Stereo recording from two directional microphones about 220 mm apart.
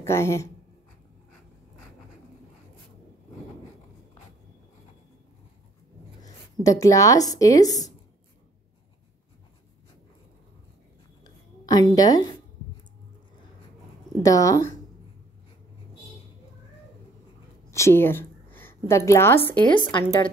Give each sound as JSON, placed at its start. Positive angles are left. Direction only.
{"t": 0.0, "sound": "a woman's voice", "side_deg": 10}
{"t": 6.6, "sound": "a woman's voice", "side_deg": 15}
{"t": 11.2, "sound": "a sound", "side_deg": 15}
{"t": 11.9, "sound": "a woman's voice", "side_deg": 15}
{"t": 14.2, "sound": "a woman's voice", "side_deg": 15}
{"t": 17.6, "sound": "a woman's voice", "side_deg": 10}
{"t": 19.7, "sound": "a woman's voice", "side_deg": 20}